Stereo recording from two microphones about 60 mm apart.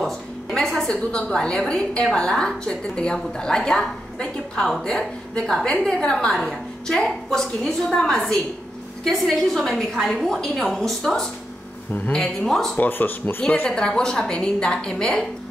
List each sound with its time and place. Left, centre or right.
0.0 s a sound: centre
2.1 s a woman's voice: centre
12.7 s speech: left
13.4 s speech: centre